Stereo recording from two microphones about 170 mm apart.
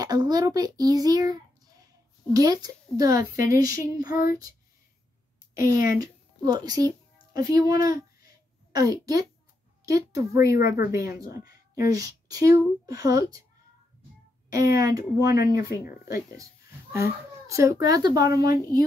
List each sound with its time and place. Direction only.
0.0 s speech: 25° right (ahead or behind)
4.1 s speech: 55° left (ahead or behind)
5.6 s speech: 55° left (ahead or behind)
5.9 s speech: 25° right (ahead or behind)
14.5 s speech: 20° right (ahead or behind)
16.9 s speech: 15° right (ahead or behind)